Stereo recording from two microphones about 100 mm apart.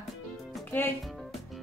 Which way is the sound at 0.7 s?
20° left (ahead or behind).